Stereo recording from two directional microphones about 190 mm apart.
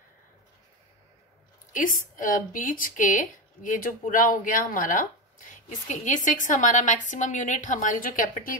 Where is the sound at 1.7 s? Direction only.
45° left (ahead or behind).